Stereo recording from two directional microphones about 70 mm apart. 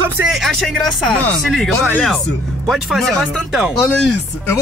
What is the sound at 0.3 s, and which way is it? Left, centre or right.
Speech, centre.